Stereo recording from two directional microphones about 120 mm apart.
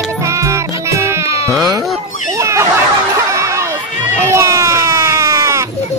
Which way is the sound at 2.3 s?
25° right (ahead or behind).